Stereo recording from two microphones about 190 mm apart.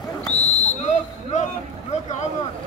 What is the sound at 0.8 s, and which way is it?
Speech, 40° left (ahead or behind).